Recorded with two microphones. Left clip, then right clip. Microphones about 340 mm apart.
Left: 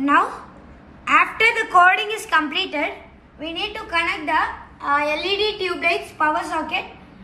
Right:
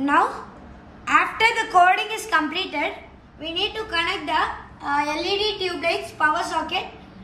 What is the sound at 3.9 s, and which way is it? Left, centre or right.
A woman's voice, centre.